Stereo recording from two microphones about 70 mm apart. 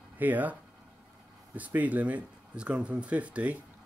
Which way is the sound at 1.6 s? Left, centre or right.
Right.